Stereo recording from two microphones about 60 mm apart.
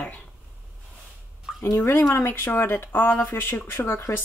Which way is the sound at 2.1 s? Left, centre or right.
Left.